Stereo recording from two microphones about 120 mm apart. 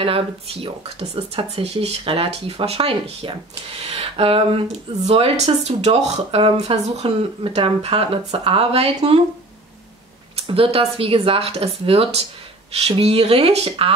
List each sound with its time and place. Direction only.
0.0 s speech: 50° right (ahead or behind)
7.0 s speech: 50° right (ahead or behind)
10.3 s speech: 50° right (ahead or behind)